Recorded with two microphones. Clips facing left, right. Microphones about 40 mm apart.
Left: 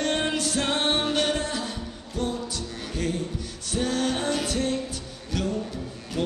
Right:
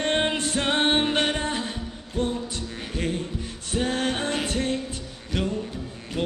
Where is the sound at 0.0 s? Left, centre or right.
Right.